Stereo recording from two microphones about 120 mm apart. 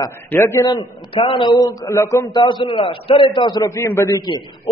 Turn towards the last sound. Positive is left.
turn(degrees=30)  # may be behind; listen again after turning